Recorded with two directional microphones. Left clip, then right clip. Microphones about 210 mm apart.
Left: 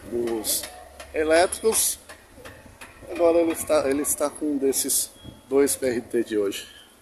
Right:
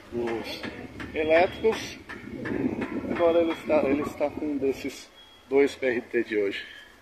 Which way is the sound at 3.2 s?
20° left (ahead or behind).